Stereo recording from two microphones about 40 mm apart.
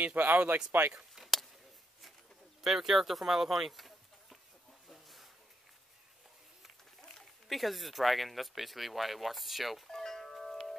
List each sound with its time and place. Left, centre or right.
0.0 s speech: right
1.1 s a sound: centre
2.6 s speech: centre
4.8 s a sound: centre
7.4 s speech: centre
9.8 s doorbell: centre